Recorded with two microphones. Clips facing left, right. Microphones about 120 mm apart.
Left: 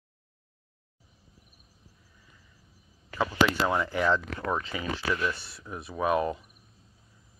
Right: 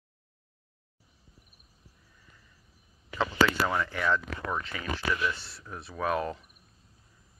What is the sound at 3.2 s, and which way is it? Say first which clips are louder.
Speech: left 1 dB; 10° left (ahead or behind).